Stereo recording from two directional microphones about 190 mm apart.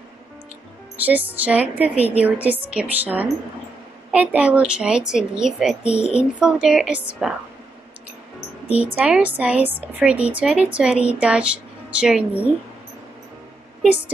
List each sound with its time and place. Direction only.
0.9 s a woman's voice: 10° right (ahead or behind)
5.9 s a child's voice: 35° left (ahead or behind)
6.1 s a woman's voice: 5° right (ahead or behind)
8.9 s a woman's voice: 5° right (ahead or behind)